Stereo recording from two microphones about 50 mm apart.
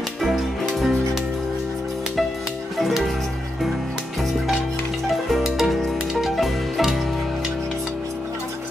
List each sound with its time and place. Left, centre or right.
0.2 s music: centre
2.8 s music: centre
5.3 s music: centre